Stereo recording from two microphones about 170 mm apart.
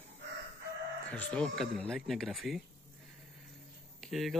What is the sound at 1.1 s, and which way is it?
Speech, 5° left (ahead or behind).